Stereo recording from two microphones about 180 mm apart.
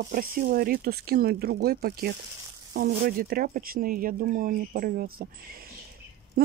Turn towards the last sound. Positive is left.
turn(degrees=-55)  # may be behind; listen again after turning